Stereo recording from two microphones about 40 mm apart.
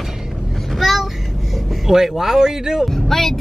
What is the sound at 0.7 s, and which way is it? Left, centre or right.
Vehicle, centre.